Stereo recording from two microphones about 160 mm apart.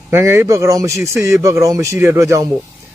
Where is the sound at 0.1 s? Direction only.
15° right (ahead or behind).